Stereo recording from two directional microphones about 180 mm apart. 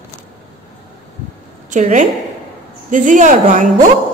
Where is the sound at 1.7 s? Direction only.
45° right (ahead or behind).